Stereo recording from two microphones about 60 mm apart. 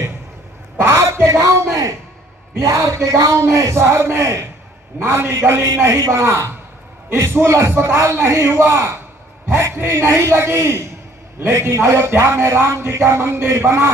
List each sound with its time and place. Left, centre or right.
0.7 s a man's voice: right
4.9 s a man's voice: right